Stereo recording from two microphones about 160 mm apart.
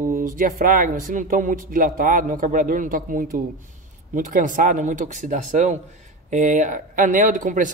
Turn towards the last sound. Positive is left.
turn(degrees=-55)  # may be behind; listen again after turning